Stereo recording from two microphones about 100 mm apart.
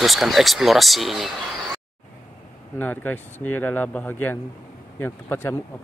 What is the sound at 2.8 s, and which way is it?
Speech, 15° left (ahead or behind).